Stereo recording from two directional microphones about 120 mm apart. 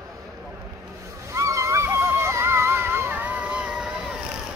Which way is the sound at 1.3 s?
25° right (ahead or behind).